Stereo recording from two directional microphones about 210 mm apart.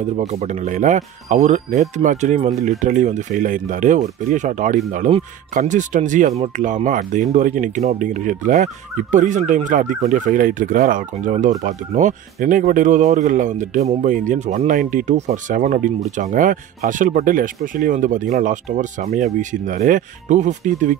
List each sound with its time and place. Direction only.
0.1 s speech: 30° right (ahead or behind)